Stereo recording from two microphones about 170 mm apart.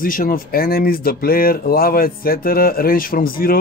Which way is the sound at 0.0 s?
55° left (ahead or behind).